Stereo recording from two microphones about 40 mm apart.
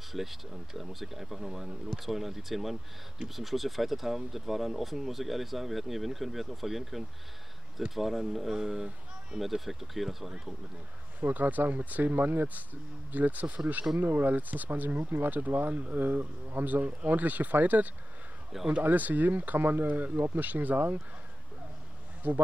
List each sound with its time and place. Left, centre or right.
0.1 s speech: centre
11.1 s speech: right
14.0 s speech: right
22.2 s speech: right